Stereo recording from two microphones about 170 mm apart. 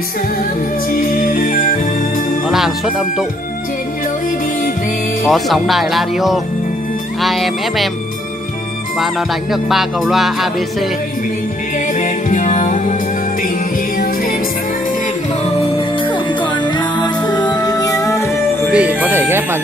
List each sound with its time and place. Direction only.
0.9 s music: 55° left (ahead or behind)
2.4 s speech: centre (ahead or behind)
5.3 s music: centre (ahead or behind)
9.0 s music: centre (ahead or behind)
11.9 s music: 50° left (ahead or behind)
13.9 s music: 55° left (ahead or behind)
16.0 s music: 30° left (ahead or behind)
18.7 s speech: 5° right (ahead or behind)